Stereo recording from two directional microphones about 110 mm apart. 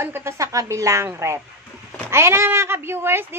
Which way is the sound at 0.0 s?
25° right (ahead or behind).